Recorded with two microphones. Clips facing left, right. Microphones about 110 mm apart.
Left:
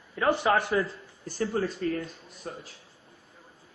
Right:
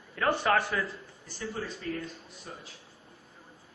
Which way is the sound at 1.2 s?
50° left (ahead or behind).